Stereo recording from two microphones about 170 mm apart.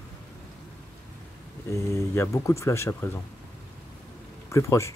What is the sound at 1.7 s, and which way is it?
Speech, 15° left (ahead or behind).